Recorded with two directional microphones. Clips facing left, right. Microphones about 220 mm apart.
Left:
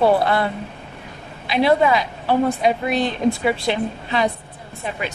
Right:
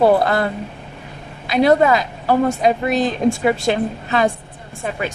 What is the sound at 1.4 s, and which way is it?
A man's voice, 45° right (ahead or behind).